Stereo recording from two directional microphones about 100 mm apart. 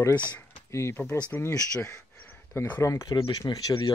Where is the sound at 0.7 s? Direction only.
30° left (ahead or behind).